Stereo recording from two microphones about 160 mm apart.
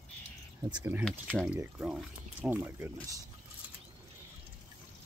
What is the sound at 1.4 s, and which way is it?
Speech, 10° right (ahead or behind).